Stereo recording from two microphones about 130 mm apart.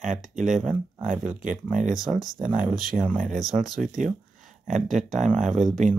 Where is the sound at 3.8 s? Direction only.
80° right.